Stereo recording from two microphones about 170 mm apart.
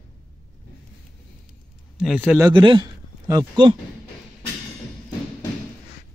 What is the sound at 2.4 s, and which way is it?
A man's voice, 25° right (ahead or behind).